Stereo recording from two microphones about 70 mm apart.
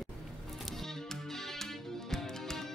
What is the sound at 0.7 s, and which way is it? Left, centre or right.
Music, centre.